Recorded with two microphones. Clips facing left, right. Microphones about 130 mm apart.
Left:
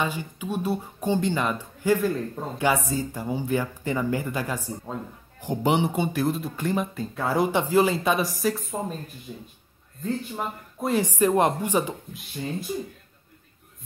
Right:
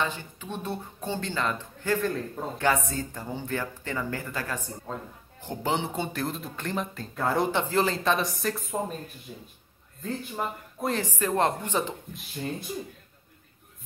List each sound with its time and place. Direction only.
0.0 s speech: 10° left (ahead or behind)
6.2 s speech: 5° left (ahead or behind)
11.0 s speech: 15° left (ahead or behind)